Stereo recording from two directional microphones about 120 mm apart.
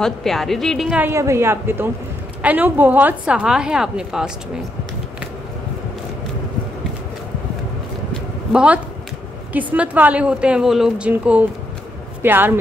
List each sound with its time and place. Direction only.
0.0 s a woman's voice: 5° left (ahead or behind)
0.9 s a woman's voice: 20° right (ahead or behind); by 4.3 s 5° right (ahead or behind)
8.5 s a woman's voice: 10° right (ahead or behind)